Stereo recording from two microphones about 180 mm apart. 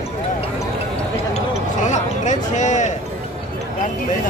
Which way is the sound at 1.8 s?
40° left (ahead or behind).